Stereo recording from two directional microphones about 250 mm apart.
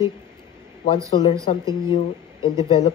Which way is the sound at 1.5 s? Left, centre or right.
Left.